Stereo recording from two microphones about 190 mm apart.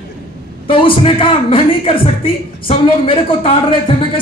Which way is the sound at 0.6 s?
25° left (ahead or behind).